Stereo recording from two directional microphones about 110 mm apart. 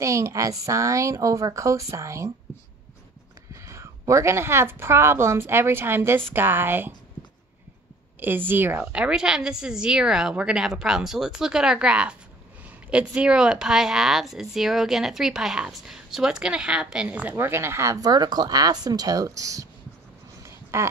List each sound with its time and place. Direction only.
0.0 s a woman's voice: 30° right (ahead or behind)
3.6 s a woman's voice: 25° right (ahead or behind)
8.2 s speech: 20° right (ahead or behind)
20.4 s a sound: 25° right (ahead or behind)